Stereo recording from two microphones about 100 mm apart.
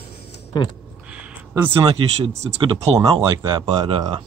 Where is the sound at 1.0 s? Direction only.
10° right (ahead or behind).